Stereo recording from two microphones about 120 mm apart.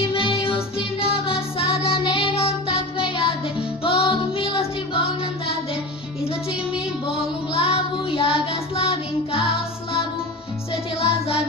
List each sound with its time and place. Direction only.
0.1 s music: 45° left (ahead or behind)
7.5 s child singing: 50° left (ahead or behind)
11.0 s music: 55° left (ahead or behind)